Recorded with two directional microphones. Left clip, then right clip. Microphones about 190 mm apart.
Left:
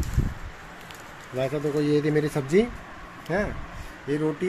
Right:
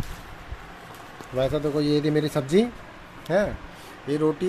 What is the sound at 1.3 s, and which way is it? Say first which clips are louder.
Speech: right 2 dB; 30° right (ahead or behind).